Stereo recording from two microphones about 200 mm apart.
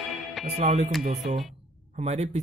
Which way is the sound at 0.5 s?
35° right (ahead or behind).